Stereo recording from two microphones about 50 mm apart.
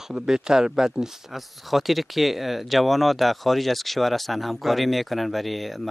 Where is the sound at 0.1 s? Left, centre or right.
Centre.